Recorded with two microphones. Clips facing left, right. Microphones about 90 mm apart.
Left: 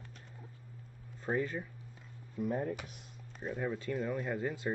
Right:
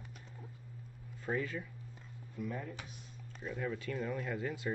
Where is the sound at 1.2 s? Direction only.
20° left (ahead or behind).